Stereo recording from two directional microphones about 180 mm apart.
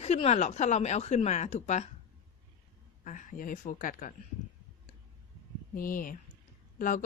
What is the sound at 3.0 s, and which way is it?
Speech, 45° left (ahead or behind).